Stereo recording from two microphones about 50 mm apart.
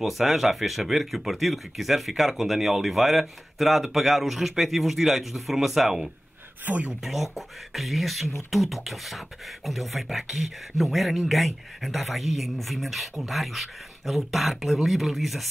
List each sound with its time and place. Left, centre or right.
0.0 s speech: centre
6.6 s speech: right
7.0 s speech: centre